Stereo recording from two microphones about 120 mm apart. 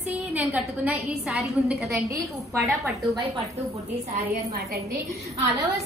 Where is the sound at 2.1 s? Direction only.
25° right (ahead or behind).